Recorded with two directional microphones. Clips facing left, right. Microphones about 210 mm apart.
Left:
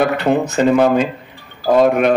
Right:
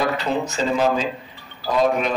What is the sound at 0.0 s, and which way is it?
A man's voice, 60° left (ahead or behind).